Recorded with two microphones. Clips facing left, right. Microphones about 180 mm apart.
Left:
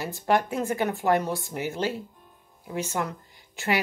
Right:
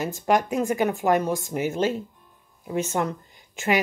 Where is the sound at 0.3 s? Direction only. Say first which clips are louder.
Right 2 dB; 15° right (ahead or behind).